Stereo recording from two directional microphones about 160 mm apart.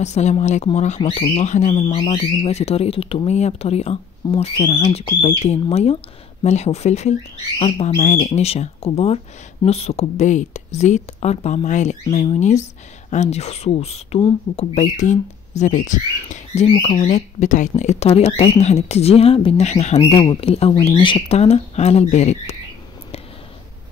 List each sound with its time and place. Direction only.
0.0 s speech: 45° left (ahead or behind)
7.9 s speech: 55° left (ahead or behind)
8.5 s speech: 40° left (ahead or behind)
20.1 s speech: 35° left (ahead or behind)